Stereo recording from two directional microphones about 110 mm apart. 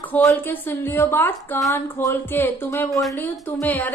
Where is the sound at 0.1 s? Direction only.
15° left (ahead or behind); by 2.1 s 30° left (ahead or behind).